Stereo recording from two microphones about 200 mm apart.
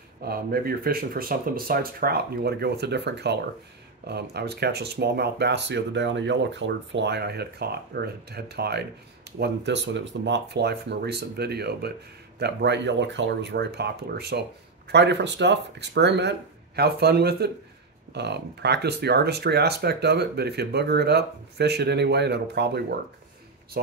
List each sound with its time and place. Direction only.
0.2 s speech: 50° right (ahead or behind)